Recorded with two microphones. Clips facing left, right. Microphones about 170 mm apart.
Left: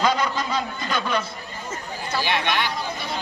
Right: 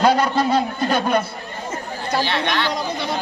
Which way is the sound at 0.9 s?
50° right (ahead or behind).